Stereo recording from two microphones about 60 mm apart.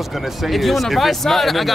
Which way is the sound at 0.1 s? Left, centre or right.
Centre.